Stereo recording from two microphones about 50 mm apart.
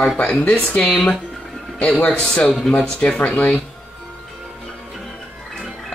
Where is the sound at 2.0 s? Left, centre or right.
Left.